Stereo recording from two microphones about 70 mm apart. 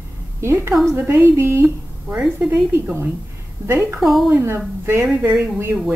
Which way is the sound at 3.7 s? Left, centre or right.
Right.